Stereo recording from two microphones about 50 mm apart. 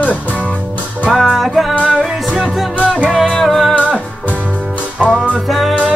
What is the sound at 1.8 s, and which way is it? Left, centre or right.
Music, centre.